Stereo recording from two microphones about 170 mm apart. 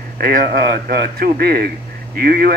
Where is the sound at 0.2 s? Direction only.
55° right (ahead or behind).